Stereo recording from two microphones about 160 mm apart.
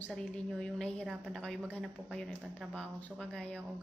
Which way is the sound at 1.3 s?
5° left (ahead or behind).